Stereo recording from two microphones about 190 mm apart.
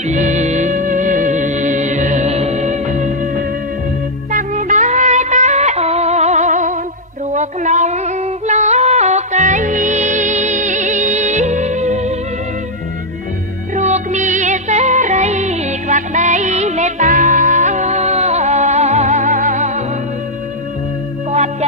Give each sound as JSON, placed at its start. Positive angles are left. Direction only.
{"t": 0.1, "sound": "music", "side_deg": -40}
{"t": 4.3, "sound": "music", "side_deg": -40}
{"t": 7.3, "sound": "female singing", "side_deg": -40}
{"t": 13.7, "sound": "music", "side_deg": -40}
{"t": 21.3, "sound": "music", "side_deg": -35}